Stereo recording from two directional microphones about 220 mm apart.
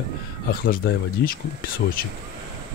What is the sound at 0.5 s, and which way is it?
Speech, 40° left (ahead or behind).